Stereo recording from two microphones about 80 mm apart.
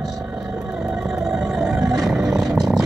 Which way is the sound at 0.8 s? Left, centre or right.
Centre.